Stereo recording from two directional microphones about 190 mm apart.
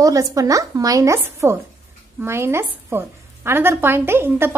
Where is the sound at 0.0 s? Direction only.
15° right (ahead or behind).